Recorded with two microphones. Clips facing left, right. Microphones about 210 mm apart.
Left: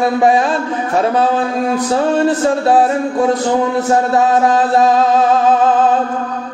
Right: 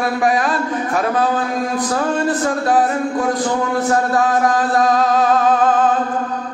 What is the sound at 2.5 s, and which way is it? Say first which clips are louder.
Speech: left 4 dB; 25° left (ahead or behind).